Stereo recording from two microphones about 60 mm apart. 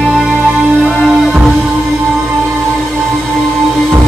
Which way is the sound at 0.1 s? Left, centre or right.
Centre.